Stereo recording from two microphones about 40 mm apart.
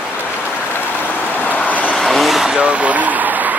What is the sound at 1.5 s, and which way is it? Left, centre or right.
Vehicle, left.